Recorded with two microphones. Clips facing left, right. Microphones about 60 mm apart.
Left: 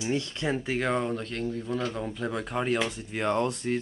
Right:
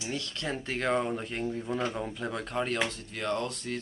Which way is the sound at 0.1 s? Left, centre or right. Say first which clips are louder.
Left 5 dB; left.